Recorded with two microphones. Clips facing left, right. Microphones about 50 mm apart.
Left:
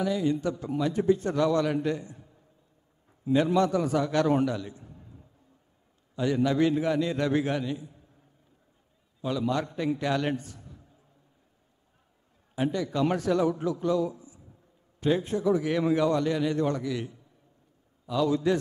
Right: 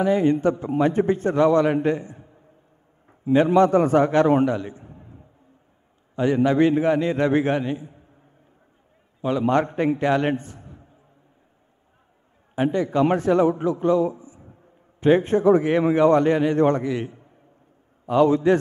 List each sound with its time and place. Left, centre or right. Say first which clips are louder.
0.0 s a man's voice: right 8 dB; right
9.2 s a man's voice: right 8 dB; right
12.5 s a man's voice: right 7 dB; right